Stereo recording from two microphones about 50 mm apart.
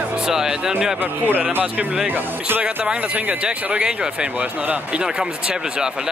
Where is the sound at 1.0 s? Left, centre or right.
Right.